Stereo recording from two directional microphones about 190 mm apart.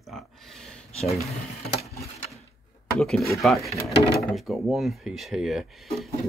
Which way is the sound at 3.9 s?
60° left (ahead or behind).